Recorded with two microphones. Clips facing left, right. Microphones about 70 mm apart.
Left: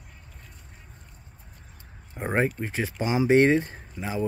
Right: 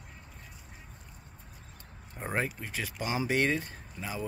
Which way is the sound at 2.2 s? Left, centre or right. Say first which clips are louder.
Left 7 dB; centre.